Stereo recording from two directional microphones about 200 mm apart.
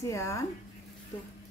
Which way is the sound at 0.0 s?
15° left (ahead or behind).